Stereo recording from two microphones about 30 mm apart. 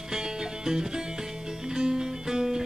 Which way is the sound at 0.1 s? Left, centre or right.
Right.